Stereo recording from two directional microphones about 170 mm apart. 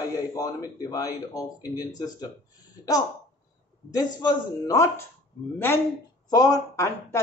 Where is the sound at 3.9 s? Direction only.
25° left (ahead or behind).